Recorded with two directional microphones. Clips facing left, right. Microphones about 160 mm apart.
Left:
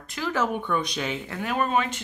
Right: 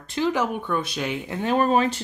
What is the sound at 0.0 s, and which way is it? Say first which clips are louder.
Speech: right 7 dB; 30° right (ahead or behind).